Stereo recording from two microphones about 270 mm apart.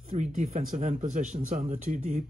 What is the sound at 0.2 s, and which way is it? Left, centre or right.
Speech, right.